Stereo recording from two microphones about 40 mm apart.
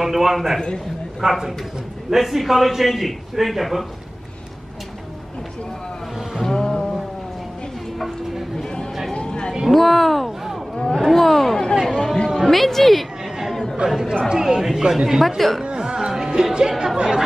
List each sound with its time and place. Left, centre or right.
0.0 s a man's voice: centre
6.5 s music: centre
8.0 s a sound: centre
9.1 s a sound: left
9.7 s speech: centre
10.8 s a sound: centre
11.1 s chatter: centre
11.7 s chatter: centre
12.4 s a woman's voice: centre
13.8 s speech: right
14.4 s speech: centre
15.2 s a man's voice: centre
15.6 s music: right